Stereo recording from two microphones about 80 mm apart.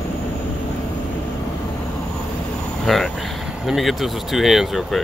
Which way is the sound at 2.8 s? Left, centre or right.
Centre.